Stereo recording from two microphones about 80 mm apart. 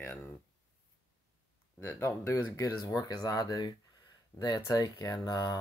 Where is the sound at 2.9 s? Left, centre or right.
Left.